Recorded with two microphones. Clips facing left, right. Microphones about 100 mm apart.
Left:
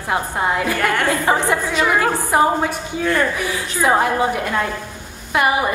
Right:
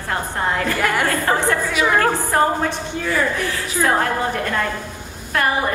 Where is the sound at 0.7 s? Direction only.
5° right (ahead or behind).